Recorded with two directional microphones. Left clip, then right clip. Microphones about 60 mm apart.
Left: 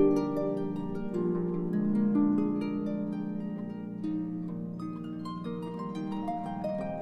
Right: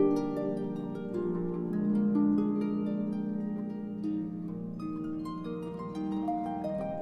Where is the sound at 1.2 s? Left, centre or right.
Centre.